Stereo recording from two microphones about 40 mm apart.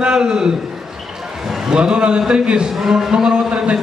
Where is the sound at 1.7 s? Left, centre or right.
Right.